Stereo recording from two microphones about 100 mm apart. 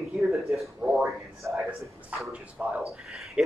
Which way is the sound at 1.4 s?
25° right (ahead or behind).